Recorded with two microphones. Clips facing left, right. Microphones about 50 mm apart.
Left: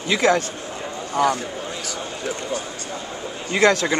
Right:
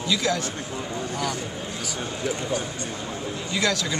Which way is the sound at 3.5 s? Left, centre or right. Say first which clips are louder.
Left 8 dB; left.